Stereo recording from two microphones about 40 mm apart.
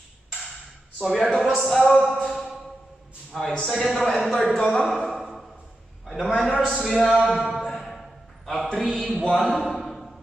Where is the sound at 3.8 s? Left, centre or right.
Centre.